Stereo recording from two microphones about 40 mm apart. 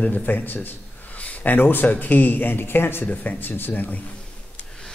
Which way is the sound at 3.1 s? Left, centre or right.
Left.